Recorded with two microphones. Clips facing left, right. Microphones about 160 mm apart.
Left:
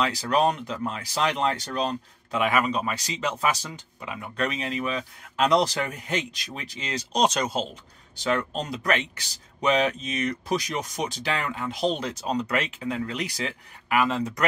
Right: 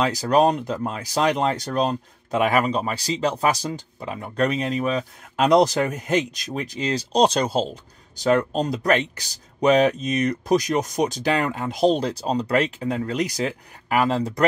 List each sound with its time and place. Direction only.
0.0 s speech: 40° right (ahead or behind)